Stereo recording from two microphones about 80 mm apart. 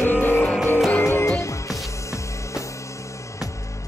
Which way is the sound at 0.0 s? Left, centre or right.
Left.